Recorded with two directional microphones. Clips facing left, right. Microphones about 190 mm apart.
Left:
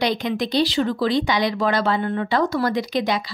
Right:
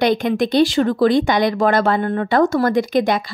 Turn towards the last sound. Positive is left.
turn(degrees=-50)  # may be behind; listen again after turning